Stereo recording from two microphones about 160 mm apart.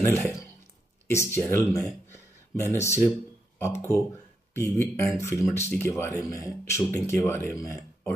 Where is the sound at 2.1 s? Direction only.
15° left (ahead or behind).